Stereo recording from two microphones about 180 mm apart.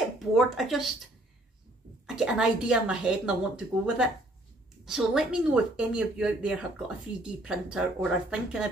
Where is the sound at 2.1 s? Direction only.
5° right (ahead or behind).